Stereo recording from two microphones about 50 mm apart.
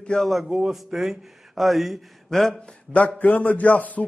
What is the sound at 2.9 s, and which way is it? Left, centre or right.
A man's voice, left.